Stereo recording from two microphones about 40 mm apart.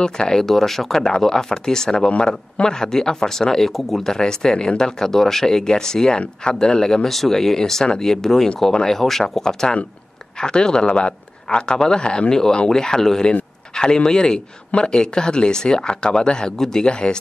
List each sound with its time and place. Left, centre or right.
0.0 s speech: centre
2.0 s speech: left; by 4.1 s centre
4.1 s speech: centre
16.5 s speech: centre
16.8 s speech: left